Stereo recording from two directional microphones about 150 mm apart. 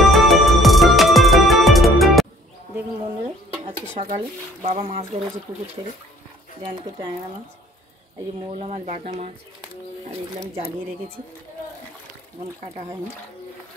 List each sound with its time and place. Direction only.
0.0 s music: centre (ahead or behind)
3.9 s speech: 45° right (ahead or behind)
8.5 s speech: 45° right (ahead or behind)